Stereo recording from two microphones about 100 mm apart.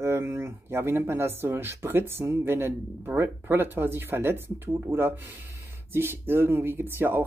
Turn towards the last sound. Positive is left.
turn(degrees=-20)  # may be behind; listen again after turning